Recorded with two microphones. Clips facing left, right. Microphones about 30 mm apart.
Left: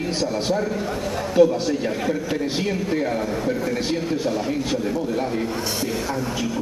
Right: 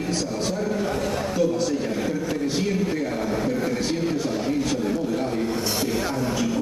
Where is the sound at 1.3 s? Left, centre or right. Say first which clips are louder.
Left 7 dB; left.